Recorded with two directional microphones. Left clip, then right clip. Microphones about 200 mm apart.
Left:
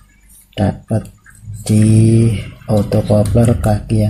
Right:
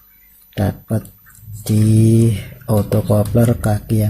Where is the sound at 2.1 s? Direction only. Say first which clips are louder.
Left 1 dB; 30° right (ahead or behind).